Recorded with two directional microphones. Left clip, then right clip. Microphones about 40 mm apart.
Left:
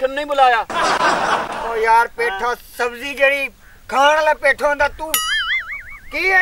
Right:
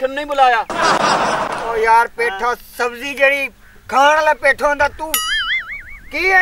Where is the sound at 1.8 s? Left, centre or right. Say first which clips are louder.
Right 1 dB; right.